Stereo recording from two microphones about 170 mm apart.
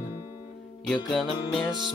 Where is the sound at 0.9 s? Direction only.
5° left (ahead or behind).